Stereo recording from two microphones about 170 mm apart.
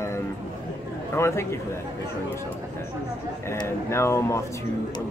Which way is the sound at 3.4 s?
15° left (ahead or behind).